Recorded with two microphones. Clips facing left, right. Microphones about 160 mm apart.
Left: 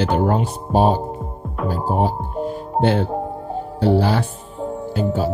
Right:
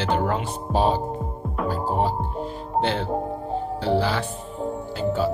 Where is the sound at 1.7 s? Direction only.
50° left (ahead or behind).